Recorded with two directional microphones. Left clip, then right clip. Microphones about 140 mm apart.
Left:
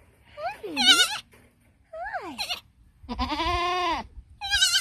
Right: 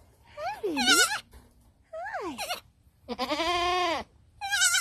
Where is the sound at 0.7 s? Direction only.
10° right (ahead or behind).